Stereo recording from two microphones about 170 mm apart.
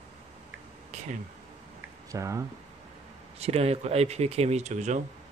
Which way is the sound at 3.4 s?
35° right (ahead or behind).